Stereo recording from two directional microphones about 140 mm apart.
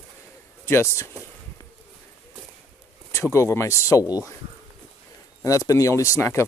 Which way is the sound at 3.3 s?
20° left (ahead or behind).